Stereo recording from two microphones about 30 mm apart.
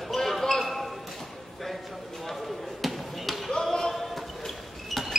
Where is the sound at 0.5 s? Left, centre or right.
Centre.